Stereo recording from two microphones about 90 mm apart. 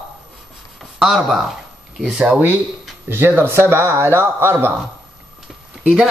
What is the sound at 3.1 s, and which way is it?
Speech, 25° right (ahead or behind).